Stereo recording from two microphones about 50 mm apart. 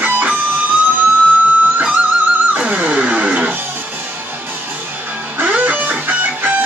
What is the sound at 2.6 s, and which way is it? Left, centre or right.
Music, right.